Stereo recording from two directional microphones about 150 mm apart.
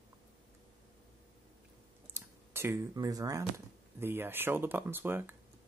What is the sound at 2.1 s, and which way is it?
Speech, 15° right (ahead or behind).